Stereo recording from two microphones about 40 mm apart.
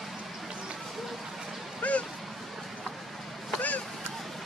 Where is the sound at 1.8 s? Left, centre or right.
Left.